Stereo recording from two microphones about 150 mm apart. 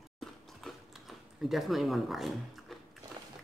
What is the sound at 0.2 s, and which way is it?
Mechanisms, centre (ahead or behind).